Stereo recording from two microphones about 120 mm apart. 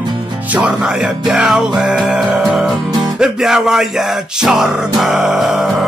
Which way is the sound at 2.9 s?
35° right (ahead or behind).